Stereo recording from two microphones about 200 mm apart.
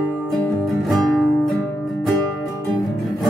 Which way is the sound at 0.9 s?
Centre (ahead or behind).